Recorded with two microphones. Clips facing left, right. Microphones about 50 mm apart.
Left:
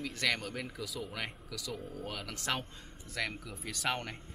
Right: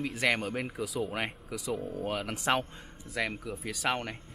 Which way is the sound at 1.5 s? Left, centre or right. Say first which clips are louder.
Right 7 dB; centre.